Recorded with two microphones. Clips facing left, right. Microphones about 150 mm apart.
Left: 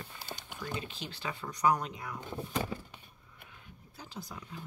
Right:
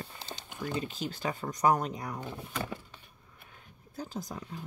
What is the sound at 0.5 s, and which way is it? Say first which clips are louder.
Speech: right 6 dB; 40° right (ahead or behind).